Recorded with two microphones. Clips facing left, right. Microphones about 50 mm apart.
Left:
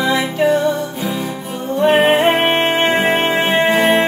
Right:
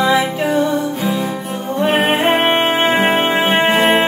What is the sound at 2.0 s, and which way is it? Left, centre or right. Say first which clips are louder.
Music: left 2 dB; centre.